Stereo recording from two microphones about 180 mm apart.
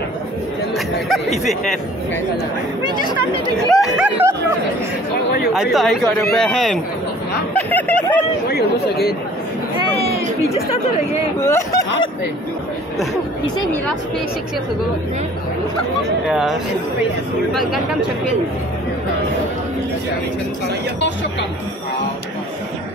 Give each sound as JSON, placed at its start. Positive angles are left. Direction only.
{"t": 0.7, "sound": "chatter", "side_deg": 0}
{"t": 1.4, "sound": "a man's voice", "side_deg": 0}
{"t": 3.6, "sound": "a man's voice", "side_deg": 0}
{"t": 5.5, "sound": "a man's voice", "side_deg": 0}
{"t": 8.5, "sound": "speech", "side_deg": 60}
{"t": 9.8, "sound": "a sound", "side_deg": 30}
{"t": 11.3, "sound": "speech", "side_deg": 15}
{"t": 16.3, "sound": "a man's voice", "side_deg": -5}